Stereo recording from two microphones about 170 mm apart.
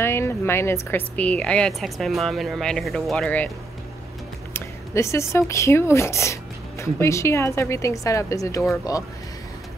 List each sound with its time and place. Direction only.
0.0 s a woman's voice: 15° left (ahead or behind)
4.6 s speech: 15° left (ahead or behind)